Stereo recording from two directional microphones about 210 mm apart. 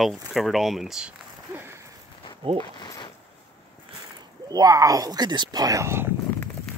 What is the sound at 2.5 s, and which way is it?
Zipper, 20° left (ahead or behind).